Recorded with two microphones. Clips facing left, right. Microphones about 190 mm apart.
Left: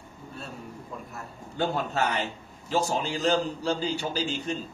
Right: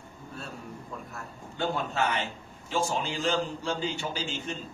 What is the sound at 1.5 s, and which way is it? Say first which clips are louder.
A man's voice: left 2 dB; 40° left (ahead or behind).